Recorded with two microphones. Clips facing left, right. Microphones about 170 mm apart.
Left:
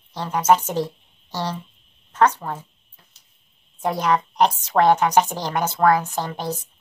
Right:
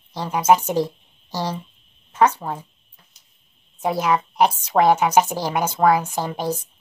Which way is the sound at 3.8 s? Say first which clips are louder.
Right 1 dB; 5° right (ahead or behind).